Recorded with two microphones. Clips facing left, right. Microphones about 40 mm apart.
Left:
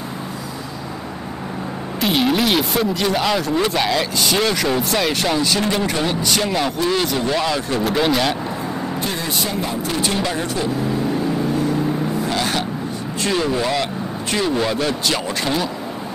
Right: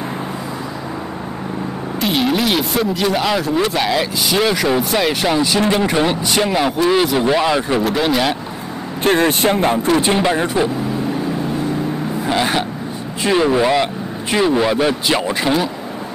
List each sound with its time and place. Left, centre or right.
2.0 s speech: centre
7.8 s speech: centre
9.0 s speech: right
9.8 s speech: right
12.3 s vehicle: centre
13.3 s speech: centre